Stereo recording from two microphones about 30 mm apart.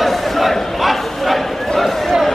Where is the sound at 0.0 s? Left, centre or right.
Centre.